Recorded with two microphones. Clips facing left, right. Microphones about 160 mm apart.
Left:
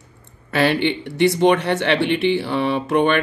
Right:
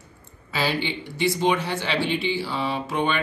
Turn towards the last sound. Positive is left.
turn(degrees=65)  # may be behind; listen again after turning